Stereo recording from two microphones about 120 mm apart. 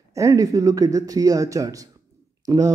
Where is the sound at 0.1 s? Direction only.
25° right (ahead or behind).